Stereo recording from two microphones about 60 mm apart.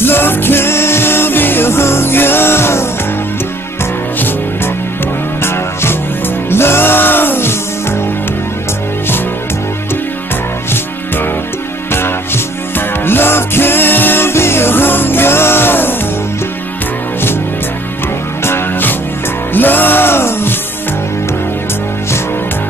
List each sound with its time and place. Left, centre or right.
0.0 s music: left
4.2 s music: left
12.7 s music: left
18.4 s music: left